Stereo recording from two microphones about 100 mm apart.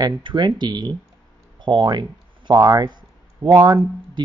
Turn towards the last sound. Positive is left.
turn(degrees=-45)  # may be behind; listen again after turning